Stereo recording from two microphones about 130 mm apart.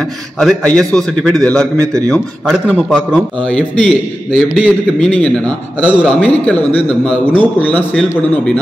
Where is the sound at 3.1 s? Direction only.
5° left (ahead or behind).